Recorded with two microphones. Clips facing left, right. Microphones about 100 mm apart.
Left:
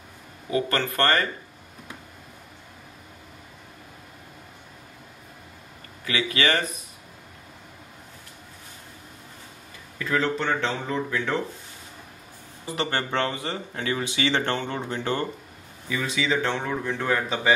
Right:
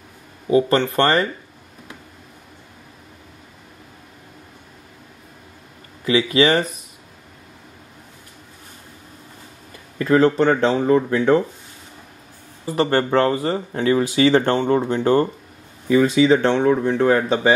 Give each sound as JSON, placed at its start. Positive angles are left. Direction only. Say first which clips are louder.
{"t": 0.5, "sound": "speech", "louder": "right 9 dB", "side_deg": -25}
{"t": 6.0, "sound": "speech", "louder": "right 8 dB", "side_deg": -30}
{"t": 9.9, "sound": "speech", "louder": "right 10 dB", "side_deg": -45}
{"t": 12.7, "sound": "speech", "louder": "right 9 dB", "side_deg": -40}
{"t": 16.4, "sound": "speech", "louder": "right 10 dB", "side_deg": -25}